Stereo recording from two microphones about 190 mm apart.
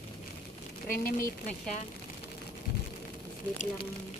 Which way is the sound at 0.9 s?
45° left (ahead or behind).